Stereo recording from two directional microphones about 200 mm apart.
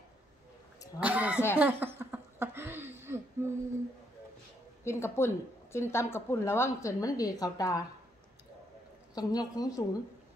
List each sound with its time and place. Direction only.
1.0 s a sound: 5° right (ahead or behind)
4.8 s a woman's voice: 15° left (ahead or behind)
9.1 s a woman's voice: 20° left (ahead or behind)